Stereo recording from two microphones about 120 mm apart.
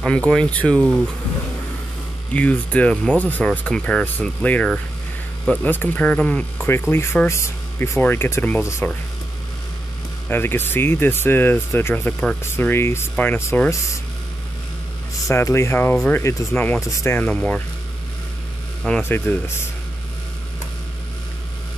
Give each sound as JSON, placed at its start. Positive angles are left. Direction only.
{"t": 0.0, "sound": "speech", "side_deg": 5}
{"t": 2.3, "sound": "speech", "side_deg": 10}
{"t": 10.2, "sound": "speech", "side_deg": 15}
{"t": 15.2, "sound": "speech", "side_deg": 25}
{"t": 18.9, "sound": "speech", "side_deg": 15}